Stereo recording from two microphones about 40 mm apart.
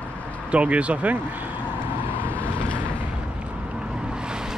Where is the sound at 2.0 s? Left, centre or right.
Right.